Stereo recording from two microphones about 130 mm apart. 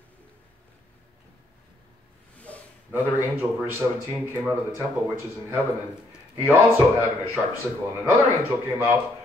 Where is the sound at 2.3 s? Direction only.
10° left (ahead or behind).